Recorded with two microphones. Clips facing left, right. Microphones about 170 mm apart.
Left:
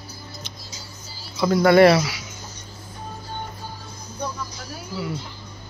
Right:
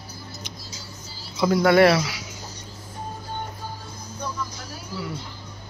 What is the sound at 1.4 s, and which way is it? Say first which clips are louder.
Speech: left 2 dB; centre (ahead or behind).